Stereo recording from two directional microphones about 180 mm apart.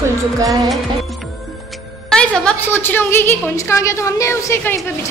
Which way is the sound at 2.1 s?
5° left (ahead or behind).